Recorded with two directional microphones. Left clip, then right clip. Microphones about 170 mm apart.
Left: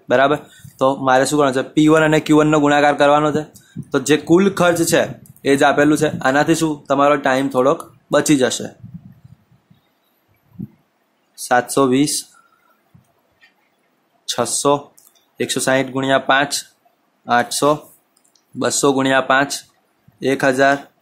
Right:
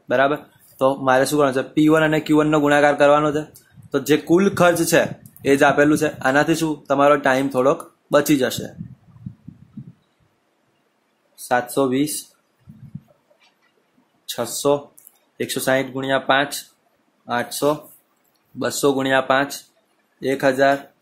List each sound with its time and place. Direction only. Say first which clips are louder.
0.1 s speech: left 4 dB; 20° left (ahead or behind)
11.4 s speech: left 4 dB; 25° left (ahead or behind)
14.2 s speech: left 4 dB; 20° left (ahead or behind)